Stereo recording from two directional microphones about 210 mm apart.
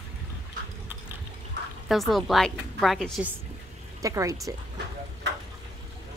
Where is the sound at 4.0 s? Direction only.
15° right (ahead or behind).